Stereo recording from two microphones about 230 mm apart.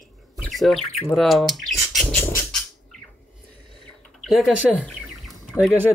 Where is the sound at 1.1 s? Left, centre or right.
Centre.